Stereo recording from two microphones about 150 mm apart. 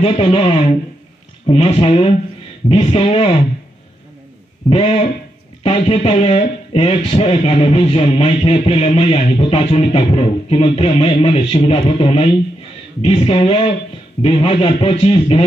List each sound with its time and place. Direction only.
0.0 s speech: 40° left (ahead or behind)
4.6 s speech: 40° left (ahead or behind)